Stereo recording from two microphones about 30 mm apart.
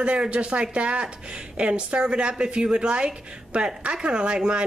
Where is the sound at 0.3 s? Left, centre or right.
Right.